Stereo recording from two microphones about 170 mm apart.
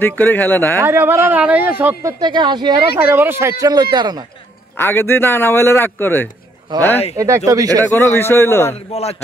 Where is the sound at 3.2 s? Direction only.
15° right (ahead or behind).